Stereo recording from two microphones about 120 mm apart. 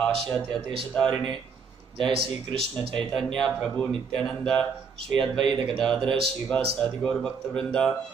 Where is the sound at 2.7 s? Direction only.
5° left (ahead or behind).